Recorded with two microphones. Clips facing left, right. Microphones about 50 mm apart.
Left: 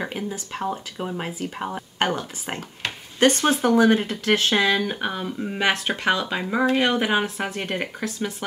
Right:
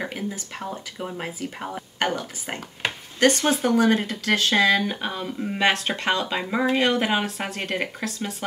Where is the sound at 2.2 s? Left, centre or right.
Centre.